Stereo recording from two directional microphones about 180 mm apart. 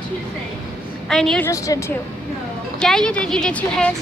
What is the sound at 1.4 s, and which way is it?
Speech, 15° left (ahead or behind).